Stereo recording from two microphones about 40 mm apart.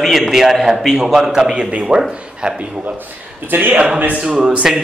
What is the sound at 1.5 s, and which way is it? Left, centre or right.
Speech, right.